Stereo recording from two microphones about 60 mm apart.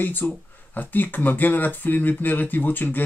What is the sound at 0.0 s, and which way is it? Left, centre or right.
Speech, left.